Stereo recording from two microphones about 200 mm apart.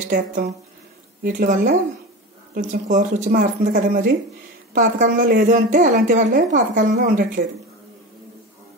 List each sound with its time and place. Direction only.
0.0 s a woman's voice: 40° right (ahead or behind)